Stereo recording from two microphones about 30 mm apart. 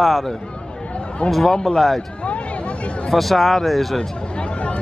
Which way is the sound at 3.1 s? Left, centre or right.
Centre.